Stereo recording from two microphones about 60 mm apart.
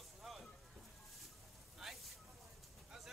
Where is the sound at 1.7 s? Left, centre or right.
Centre.